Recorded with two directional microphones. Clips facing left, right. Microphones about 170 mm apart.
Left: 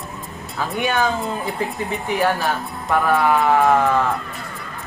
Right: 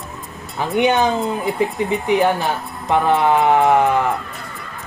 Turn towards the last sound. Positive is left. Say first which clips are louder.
# right 2 dB
turn(degrees=-20)  # may be behind; listen again after turning